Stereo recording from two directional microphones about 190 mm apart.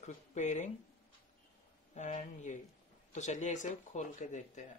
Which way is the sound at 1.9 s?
40° left (ahead or behind).